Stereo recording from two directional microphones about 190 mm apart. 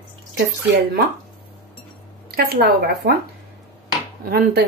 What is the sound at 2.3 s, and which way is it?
Speech, 55° right (ahead or behind).